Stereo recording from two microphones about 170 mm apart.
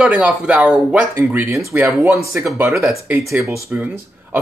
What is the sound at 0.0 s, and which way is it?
Speech, 5° right (ahead or behind).